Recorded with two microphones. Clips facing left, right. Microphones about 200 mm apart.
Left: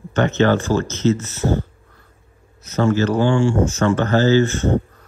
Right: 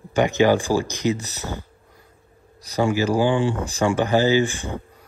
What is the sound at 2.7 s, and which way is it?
Speech, 15° right (ahead or behind).